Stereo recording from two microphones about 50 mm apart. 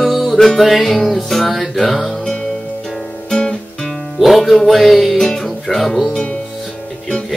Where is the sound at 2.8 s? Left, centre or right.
Centre.